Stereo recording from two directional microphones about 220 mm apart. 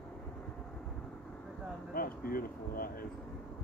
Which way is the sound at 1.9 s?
40° left (ahead or behind).